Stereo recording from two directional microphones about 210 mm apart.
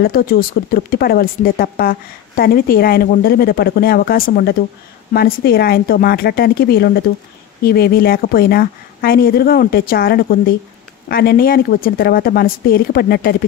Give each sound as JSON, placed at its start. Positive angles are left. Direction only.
{"t": 0.0, "sound": "speech", "side_deg": 45}